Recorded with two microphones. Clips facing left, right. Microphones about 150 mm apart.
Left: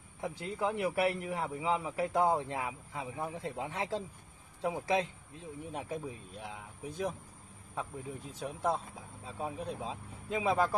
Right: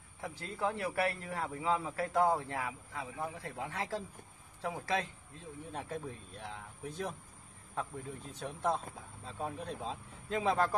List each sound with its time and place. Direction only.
0.2 s a man's voice: 20° left (ahead or behind)
8.4 s a man's voice: 10° left (ahead or behind)